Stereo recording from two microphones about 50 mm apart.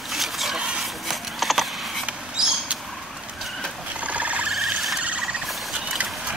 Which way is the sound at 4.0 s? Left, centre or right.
Right.